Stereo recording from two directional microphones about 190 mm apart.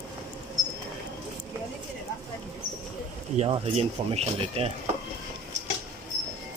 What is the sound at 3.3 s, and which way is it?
Speech, 35° right (ahead or behind).